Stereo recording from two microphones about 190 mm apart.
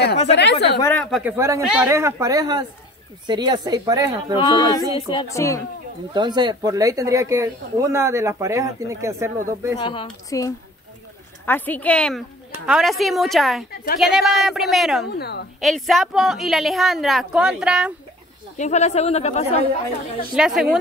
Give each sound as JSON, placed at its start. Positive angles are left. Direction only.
{"t": 0.3, "sound": "speech", "side_deg": 65}
{"t": 1.1, "sound": "a woman's voice", "side_deg": -10}
{"t": 4.4, "sound": "speech", "side_deg": 20}
{"t": 4.8, "sound": "a woman's voice", "side_deg": -20}
{"t": 5.1, "sound": "speech", "side_deg": 15}
{"t": 6.1, "sound": "speech", "side_deg": -25}
{"t": 9.8, "sound": "a woman's voice", "side_deg": 25}
{"t": 15.1, "sound": "speech", "side_deg": 55}
{"t": 15.6, "sound": "a woman's voice", "side_deg": 0}
{"t": 18.6, "sound": "speech", "side_deg": 35}
{"t": 20.3, "sound": "a woman's voice", "side_deg": -5}